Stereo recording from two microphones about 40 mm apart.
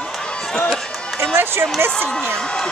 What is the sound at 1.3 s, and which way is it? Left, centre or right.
Speech, right.